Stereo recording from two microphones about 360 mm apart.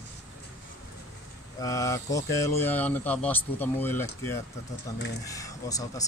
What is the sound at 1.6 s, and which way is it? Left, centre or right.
Speech, centre.